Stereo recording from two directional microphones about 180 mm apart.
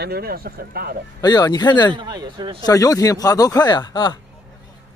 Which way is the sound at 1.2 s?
20° left (ahead or behind).